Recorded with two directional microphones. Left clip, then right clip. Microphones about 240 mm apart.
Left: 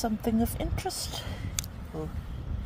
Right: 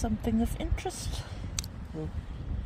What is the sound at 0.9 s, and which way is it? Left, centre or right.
Speech, centre.